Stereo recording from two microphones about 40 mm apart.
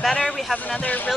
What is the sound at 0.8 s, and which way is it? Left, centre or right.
Speech, left.